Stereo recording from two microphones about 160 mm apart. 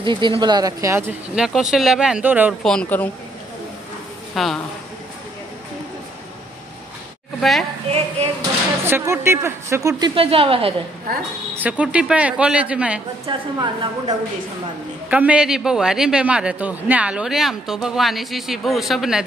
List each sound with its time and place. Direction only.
0.0 s a woman's voice: 30° right (ahead or behind)
1.3 s a man's voice: 5° right (ahead or behind)
2.6 s a man's voice: 5° left (ahead or behind)
4.4 s a man's voice: centre (ahead or behind)
7.3 s a woman's voice: centre (ahead or behind)
7.9 s a sound: 40° right (ahead or behind)
8.8 s a woman's voice: 15° right (ahead or behind); by 10.7 s 35° right (ahead or behind)
11.5 s speech: 10° right (ahead or behind)
13.3 s a woman's voice: 25° right (ahead or behind)
15.0 s a man's voice: 10° right (ahead or behind)